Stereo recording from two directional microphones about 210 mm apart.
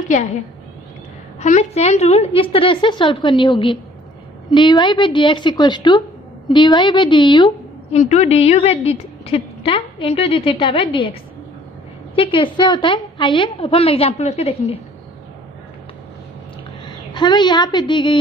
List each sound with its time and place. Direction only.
0.1 s a woman's voice: 35° left (ahead or behind)
1.4 s a woman's voice: 30° left (ahead or behind)
12.2 s a woman's voice: 25° left (ahead or behind)
16.8 s a woman's voice: 20° left (ahead or behind)